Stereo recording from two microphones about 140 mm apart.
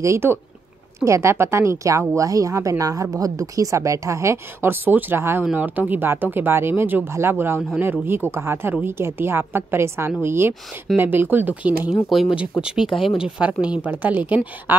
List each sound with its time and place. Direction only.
0.0 s speech: 20° right (ahead or behind); by 12.9 s 5° right (ahead or behind)
12.9 s speech: 40° left (ahead or behind)
13.4 s speech: 10° right (ahead or behind)